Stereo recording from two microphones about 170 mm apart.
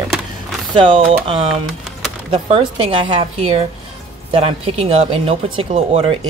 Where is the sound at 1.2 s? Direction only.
30° right (ahead or behind).